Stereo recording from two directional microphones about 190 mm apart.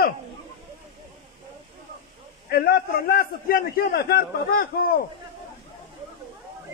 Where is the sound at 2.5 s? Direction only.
50° left (ahead or behind).